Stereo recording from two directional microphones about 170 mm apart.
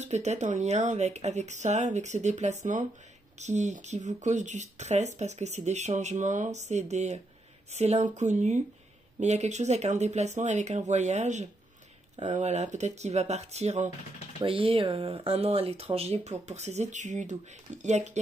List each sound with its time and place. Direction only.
0.0 s speech: 40° right (ahead or behind)